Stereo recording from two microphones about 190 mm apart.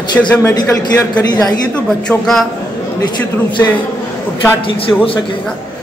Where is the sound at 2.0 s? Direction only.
Centre (ahead or behind).